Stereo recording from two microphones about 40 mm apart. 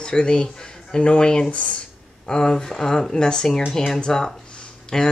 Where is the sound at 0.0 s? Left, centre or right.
Left.